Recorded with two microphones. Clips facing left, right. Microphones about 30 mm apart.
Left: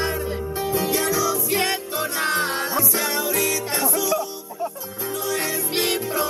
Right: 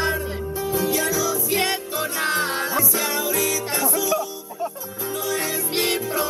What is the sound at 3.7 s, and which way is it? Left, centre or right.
Music, centre.